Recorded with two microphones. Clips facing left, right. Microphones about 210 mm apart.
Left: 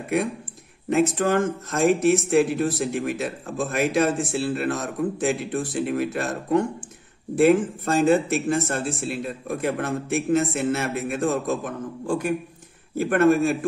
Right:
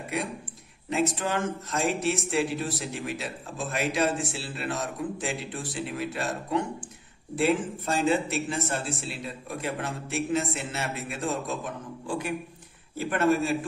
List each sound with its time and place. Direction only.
0.8 s speech: 50° left (ahead or behind)